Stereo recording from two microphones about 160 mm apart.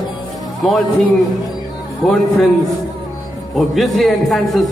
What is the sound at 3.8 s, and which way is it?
Speech, centre (ahead or behind).